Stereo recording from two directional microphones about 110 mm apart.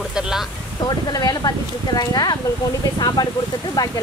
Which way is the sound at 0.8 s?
40° left (ahead or behind).